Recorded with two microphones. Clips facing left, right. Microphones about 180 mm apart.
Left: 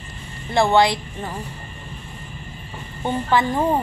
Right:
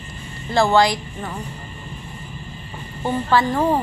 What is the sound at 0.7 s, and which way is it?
Speech, 25° left (ahead or behind).